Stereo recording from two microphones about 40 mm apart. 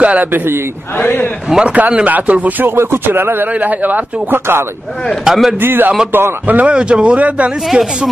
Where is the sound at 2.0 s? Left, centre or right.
Right.